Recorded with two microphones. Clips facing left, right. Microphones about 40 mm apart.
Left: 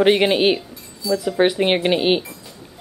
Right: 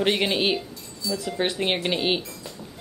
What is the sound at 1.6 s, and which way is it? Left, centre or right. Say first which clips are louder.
Speech: left 7 dB; left.